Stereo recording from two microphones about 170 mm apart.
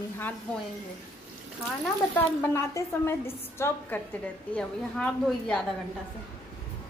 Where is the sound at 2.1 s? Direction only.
15° left (ahead or behind).